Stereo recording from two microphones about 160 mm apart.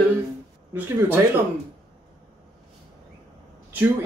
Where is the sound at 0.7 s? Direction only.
15° right (ahead or behind).